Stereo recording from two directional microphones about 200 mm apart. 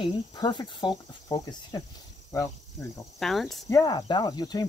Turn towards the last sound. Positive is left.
turn(degrees=20)  # may be behind; listen again after turning